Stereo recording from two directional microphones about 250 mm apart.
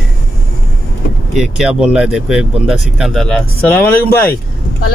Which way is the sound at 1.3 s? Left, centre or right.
Centre.